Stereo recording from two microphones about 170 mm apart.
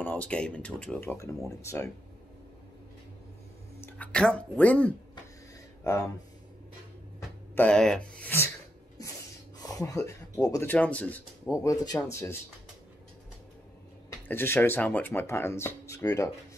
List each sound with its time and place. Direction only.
0.0 s speech: 10° left (ahead or behind)
1.6 s speech: 15° left (ahead or behind)
3.8 s speech: 5° left (ahead or behind)
7.2 s a sound: 5° left (ahead or behind)
9.6 s speech: 20° left (ahead or behind)
11.5 s speech: 20° left (ahead or behind)
14.2 s speech: 10° left (ahead or behind)